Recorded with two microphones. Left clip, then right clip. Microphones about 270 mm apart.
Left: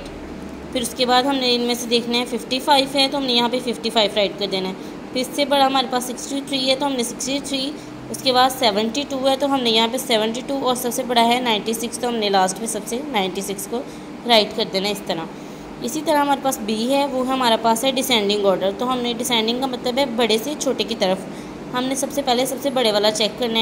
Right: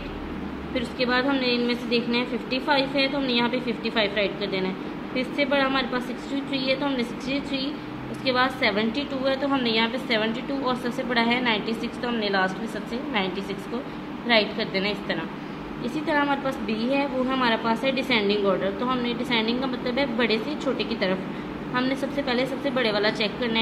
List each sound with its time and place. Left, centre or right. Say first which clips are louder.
0.7 s a woman's voice: left 7 dB; centre